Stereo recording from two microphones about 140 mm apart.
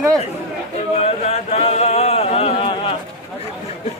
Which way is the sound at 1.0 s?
50° left (ahead or behind).